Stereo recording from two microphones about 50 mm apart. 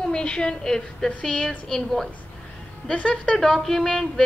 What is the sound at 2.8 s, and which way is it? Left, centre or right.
Speech, centre.